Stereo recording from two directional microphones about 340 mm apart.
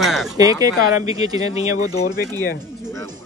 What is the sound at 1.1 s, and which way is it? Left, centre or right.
Speech, centre.